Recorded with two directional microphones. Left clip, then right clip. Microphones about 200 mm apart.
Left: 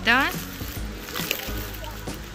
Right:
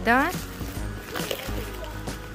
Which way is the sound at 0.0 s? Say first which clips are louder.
Left 1 dB; 25° right (ahead or behind).